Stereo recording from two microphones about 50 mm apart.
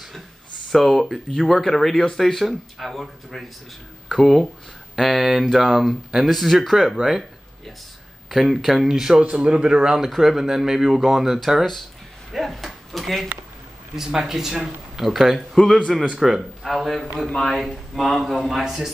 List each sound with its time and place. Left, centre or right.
0.7 s speech: centre
8.3 s speech: centre
9.2 s a man's voice: right
9.9 s speech: centre
12.3 s a sound: centre
13.9 s a man's voice: centre